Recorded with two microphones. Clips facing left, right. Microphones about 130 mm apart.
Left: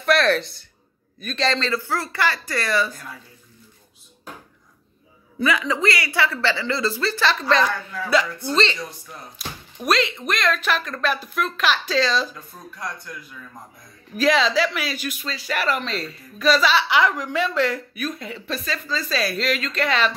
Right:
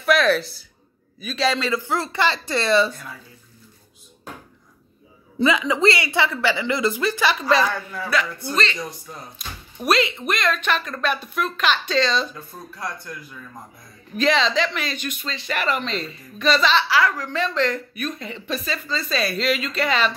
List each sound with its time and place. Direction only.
0.0 s speech: 5° right (ahead or behind); by 2.9 s 25° right (ahead or behind)
5.4 s a woman's voice: 20° right (ahead or behind)
9.8 s speech: centre (ahead or behind)
14.1 s speech: 5° left (ahead or behind)
16.9 s speech: 20° left (ahead or behind); by 20.1 s centre (ahead or behind)